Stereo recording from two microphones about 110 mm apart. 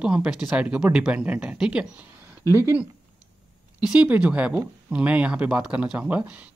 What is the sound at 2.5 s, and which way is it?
Speech, 25° right (ahead or behind).